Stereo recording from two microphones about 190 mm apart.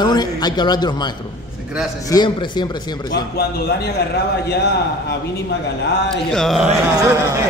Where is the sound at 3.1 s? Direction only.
55° left (ahead or behind).